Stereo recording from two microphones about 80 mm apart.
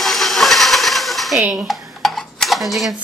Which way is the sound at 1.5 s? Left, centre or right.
Centre.